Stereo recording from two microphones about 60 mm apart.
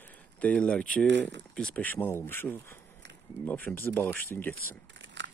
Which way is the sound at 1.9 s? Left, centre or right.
Left.